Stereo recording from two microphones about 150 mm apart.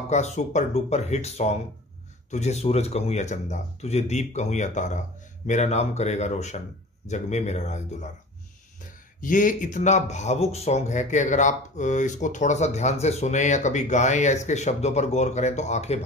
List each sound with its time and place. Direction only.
0.1 s speech: 50° left (ahead or behind)
9.2 s speech: 60° left (ahead or behind)